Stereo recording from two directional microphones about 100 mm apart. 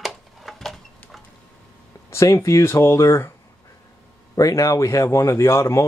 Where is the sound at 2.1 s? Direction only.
30° left (ahead or behind).